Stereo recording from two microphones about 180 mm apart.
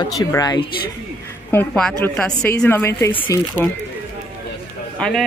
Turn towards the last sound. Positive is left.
turn(degrees=5)  # may be behind; listen again after turning